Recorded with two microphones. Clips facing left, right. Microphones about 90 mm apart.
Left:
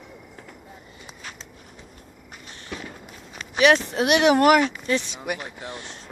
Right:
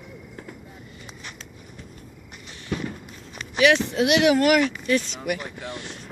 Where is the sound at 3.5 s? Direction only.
30° left (ahead or behind).